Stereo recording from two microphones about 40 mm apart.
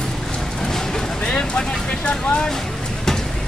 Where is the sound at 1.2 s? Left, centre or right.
Left.